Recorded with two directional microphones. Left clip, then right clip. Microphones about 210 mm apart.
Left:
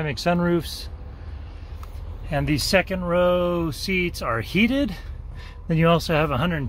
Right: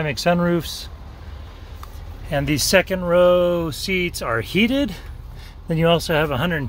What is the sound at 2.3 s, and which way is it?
Speech, 15° right (ahead or behind).